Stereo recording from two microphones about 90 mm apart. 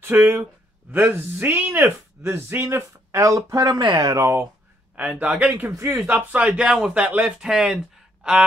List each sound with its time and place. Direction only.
0.0 s speech: 25° right (ahead or behind)
4.9 s a man's voice: 15° right (ahead or behind)
5.8 s speech: 30° right (ahead or behind)
6.0 s a man's voice: 15° right (ahead or behind)
7.4 s speech: 5° right (ahead or behind)